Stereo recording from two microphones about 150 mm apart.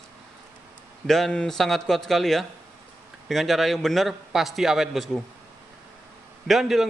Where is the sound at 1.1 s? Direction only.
Centre (ahead or behind).